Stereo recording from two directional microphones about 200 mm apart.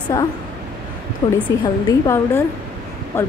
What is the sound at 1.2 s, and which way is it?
Speech, 25° left (ahead or behind).